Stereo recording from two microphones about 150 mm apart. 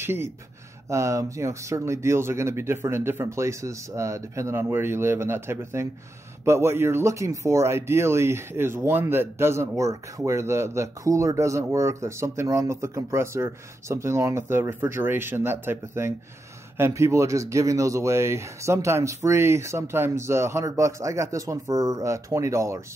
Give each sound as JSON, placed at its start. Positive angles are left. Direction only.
{"t": 0.0, "sound": "speech", "side_deg": -15}